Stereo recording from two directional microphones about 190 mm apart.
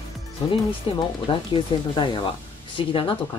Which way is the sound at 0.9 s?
30° left (ahead or behind).